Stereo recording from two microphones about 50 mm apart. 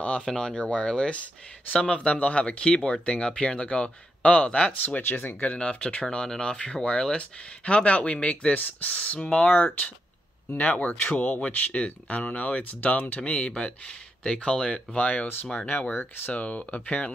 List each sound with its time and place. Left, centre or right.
0.2 s speech: centre
0.6 s speech: left
4.8 s speech: left
5.4 s speech: left
16.3 s speech: left